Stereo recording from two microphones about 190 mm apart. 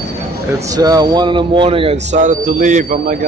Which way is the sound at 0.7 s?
20° right (ahead or behind).